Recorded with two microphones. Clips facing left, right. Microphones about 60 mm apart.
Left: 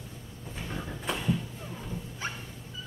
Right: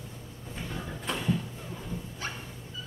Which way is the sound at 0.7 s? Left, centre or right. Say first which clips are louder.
Left 1 dB; centre.